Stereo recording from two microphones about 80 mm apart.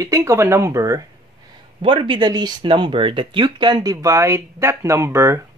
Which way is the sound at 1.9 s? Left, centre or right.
Right.